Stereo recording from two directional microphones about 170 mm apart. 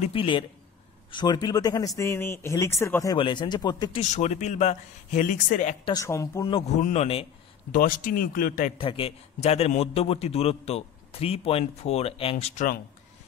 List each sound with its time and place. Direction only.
0.0 s a man's voice: 30° left (ahead or behind)
3.2 s speech: 25° left (ahead or behind)
4.0 s speech: 45° left (ahead or behind)
5.9 s speech: 15° left (ahead or behind)
6.8 s a man's voice: 40° left (ahead or behind)
7.7 s a man's voice: 55° left (ahead or behind)
8.7 s a man's voice: 30° left (ahead or behind)